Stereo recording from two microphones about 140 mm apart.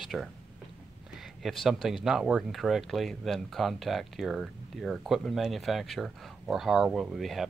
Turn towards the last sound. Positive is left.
turn(degrees=0)  # may be behind; listen again after turning